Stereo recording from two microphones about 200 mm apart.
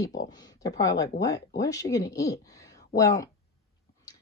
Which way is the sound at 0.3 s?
20° left (ahead or behind).